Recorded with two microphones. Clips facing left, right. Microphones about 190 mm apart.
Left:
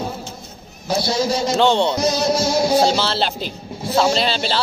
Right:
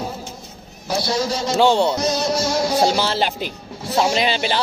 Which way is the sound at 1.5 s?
5° right (ahead or behind).